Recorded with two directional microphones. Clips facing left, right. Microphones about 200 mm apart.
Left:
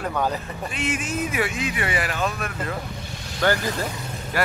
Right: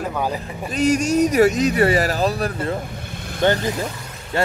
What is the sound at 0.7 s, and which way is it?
Speech, 40° right (ahead or behind).